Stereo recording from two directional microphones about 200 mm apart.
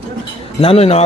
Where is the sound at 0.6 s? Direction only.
30° left (ahead or behind).